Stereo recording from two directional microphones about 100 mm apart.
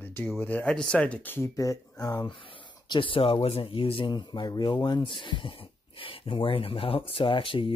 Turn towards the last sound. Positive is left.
turn(degrees=60)  # may be behind; listen again after turning